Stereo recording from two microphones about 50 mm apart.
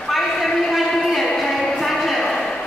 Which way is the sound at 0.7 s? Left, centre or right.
Centre.